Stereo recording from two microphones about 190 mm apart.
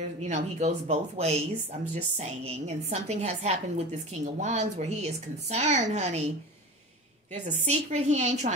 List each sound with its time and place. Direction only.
0.2 s speech: 35° right (ahead or behind)
7.4 s speech: 35° right (ahead or behind)